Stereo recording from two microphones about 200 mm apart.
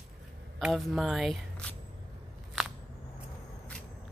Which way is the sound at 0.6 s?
Centre (ahead or behind).